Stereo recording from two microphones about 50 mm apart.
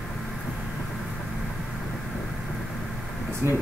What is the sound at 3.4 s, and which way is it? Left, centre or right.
Speech, right.